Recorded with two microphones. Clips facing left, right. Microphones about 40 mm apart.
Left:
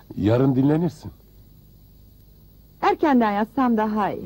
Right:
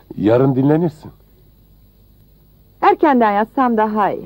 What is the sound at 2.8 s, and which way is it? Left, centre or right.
A man's voice, right.